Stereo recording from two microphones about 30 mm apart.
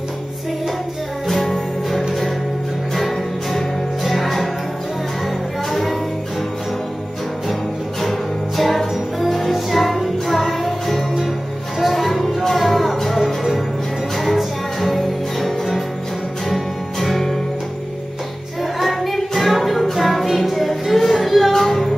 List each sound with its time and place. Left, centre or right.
1.2 s music: centre
5.7 s music: centre
8.0 s music: centre
18.6 s music: centre
21.5 s music: centre